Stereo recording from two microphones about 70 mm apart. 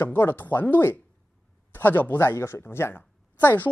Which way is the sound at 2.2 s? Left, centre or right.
Left.